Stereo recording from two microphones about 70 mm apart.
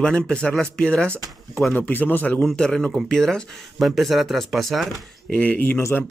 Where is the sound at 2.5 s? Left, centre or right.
Centre.